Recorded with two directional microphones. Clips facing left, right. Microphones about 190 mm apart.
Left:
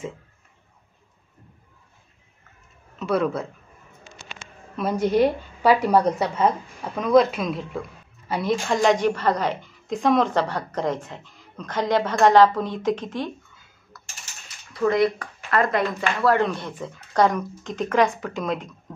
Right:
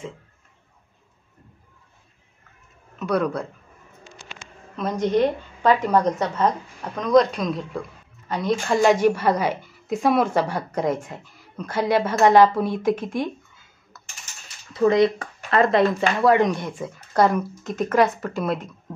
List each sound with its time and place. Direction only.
3.0 s a man's voice: 5° left (ahead or behind)
4.7 s a woman's voice: 10° left (ahead or behind)
8.6 s a woman's voice: 10° right (ahead or behind)
13.9 s typing: 20° right (ahead or behind)
14.7 s a woman's voice: 20° right (ahead or behind); by 18.9 s 5° right (ahead or behind)